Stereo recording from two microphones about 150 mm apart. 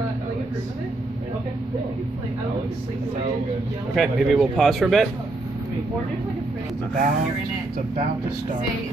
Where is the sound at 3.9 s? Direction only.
Centre (ahead or behind).